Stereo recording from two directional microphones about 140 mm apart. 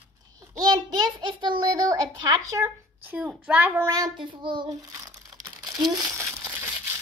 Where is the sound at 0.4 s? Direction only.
30° right (ahead or behind).